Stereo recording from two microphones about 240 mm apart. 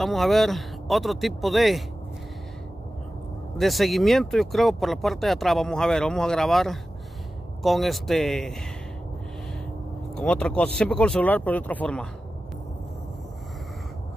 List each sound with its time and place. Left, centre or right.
0.0 s speech: centre
3.5 s speech: centre
10.1 s speech: centre